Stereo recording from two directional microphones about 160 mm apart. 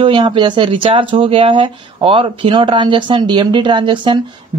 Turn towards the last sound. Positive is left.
turn(degrees=-30)  # may be behind; listen again after turning